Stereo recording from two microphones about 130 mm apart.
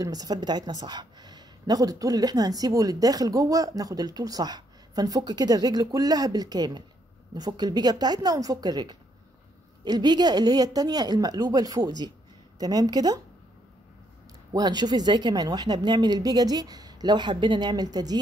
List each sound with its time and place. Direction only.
0.0 s speech: 30° right (ahead or behind)
14.5 s speech: 30° right (ahead or behind)